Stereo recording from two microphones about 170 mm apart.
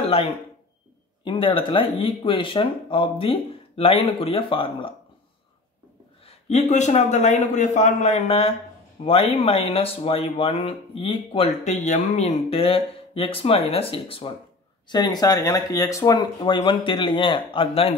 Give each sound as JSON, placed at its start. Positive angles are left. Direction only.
{"t": 1.2, "sound": "speech", "side_deg": 30}
{"t": 6.2, "sound": "a man's voice", "side_deg": 40}